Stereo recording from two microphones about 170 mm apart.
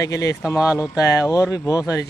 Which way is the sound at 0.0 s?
20° left (ahead or behind).